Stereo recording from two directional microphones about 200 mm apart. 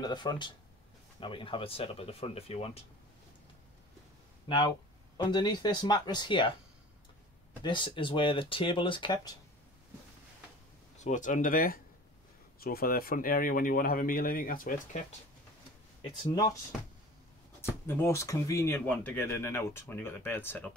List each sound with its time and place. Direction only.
0.0 s speech: 20° left (ahead or behind)
4.5 s speech: 25° left (ahead or behind)
7.6 s speech: 25° left (ahead or behind)
11.0 s speech: 40° left (ahead or behind)
16.0 s speech: 20° left (ahead or behind)
17.6 s speech: 10° left (ahead or behind)